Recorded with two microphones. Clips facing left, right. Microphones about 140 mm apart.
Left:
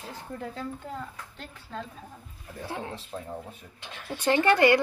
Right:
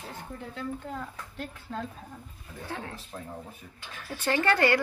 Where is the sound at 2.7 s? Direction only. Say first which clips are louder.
Left 3 dB; 20° left (ahead or behind).